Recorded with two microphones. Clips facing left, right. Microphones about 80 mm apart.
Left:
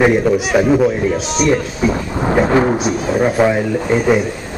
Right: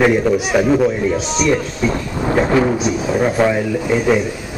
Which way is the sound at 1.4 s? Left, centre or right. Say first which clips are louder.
Left 3 dB; centre.